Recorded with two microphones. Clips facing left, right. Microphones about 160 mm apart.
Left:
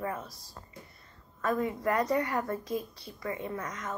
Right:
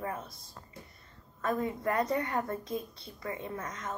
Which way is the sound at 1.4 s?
25° right (ahead or behind).